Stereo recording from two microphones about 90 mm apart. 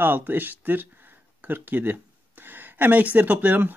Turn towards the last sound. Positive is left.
turn(degrees=-20)  # may be behind; listen again after turning